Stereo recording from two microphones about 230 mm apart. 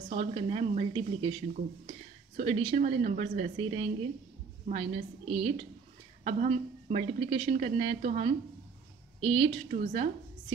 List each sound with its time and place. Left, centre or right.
0.1 s a woman's voice: right